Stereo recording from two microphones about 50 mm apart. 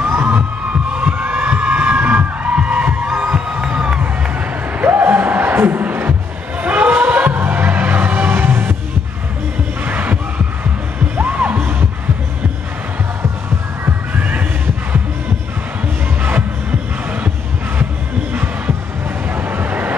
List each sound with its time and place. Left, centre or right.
0.1 s heart sounds: right
0.9 s heart sounds: right
1.6 s crowd: right
2.5 s a sound: right
3.7 s crowd: right
4.7 s music: right
9.8 s heart sounds: right
11.1 s music: right
13.8 s music: right
16.2 s heart sounds: right
18.3 s music: right
19.3 s a sound: right